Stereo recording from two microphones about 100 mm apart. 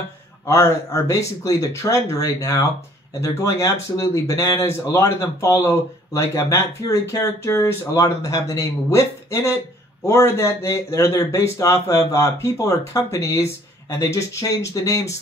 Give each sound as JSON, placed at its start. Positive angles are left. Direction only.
{"t": 0.5, "sound": "speech", "side_deg": 30}